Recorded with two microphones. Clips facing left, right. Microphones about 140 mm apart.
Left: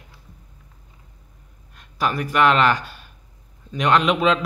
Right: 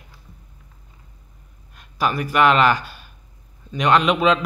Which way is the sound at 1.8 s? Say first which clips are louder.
Right 1 dB; 5° right (ahead or behind).